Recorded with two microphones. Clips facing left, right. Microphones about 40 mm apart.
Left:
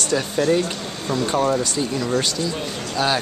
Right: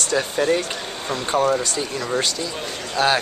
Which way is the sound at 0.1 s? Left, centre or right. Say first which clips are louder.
Left 1 dB; centre.